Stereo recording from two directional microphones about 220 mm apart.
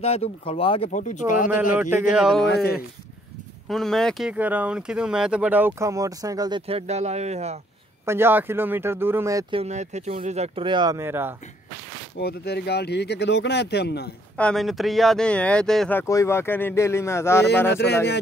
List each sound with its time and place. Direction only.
0.0 s speech: 25° left (ahead or behind)
1.7 s speech: 10° right (ahead or behind)
2.4 s speech: 45° left (ahead or behind)
3.6 s speech: centre (ahead or behind); by 7.5 s 30° right (ahead or behind)
8.0 s speech: 10° right (ahead or behind)
9.6 s speech: 30° right (ahead or behind); by 11.3 s 10° right (ahead or behind)
12.2 s speech: 45° left (ahead or behind)
14.3 s speech: 5° left (ahead or behind)
17.6 s speech: 50° left (ahead or behind)